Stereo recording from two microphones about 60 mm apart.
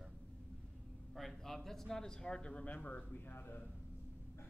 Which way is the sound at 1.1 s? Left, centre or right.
Centre.